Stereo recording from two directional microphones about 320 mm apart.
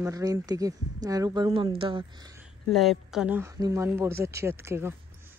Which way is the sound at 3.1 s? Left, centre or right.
Centre.